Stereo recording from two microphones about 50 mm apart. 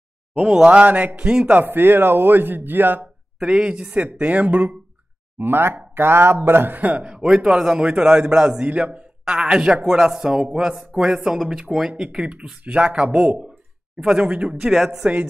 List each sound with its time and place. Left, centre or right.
0.7 s speech: right
1.6 s speech: right
3.3 s speech: centre
5.4 s speech: right
6.8 s speech: right
7.2 s a man's voice: centre
10.8 s speech: centre
11.1 s a man's voice: centre
14.6 s a man's voice: centre